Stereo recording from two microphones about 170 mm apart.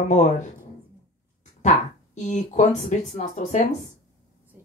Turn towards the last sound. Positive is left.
turn(degrees=45)  # may be behind; listen again after turning